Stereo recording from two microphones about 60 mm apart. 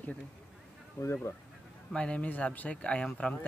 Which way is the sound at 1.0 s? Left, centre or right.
Left.